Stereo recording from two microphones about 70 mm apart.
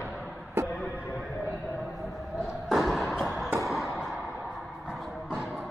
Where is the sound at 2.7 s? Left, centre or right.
Centre.